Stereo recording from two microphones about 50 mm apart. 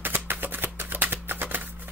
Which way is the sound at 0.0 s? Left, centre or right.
Right.